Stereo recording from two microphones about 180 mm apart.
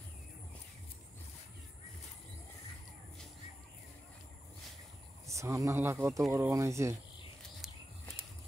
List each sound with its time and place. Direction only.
5.2 s speech: 15° right (ahead or behind)